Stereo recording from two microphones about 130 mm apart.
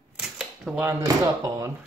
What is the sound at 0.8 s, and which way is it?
Speech, 25° right (ahead or behind).